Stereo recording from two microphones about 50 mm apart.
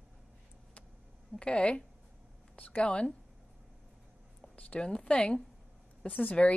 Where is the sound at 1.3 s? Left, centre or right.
Left.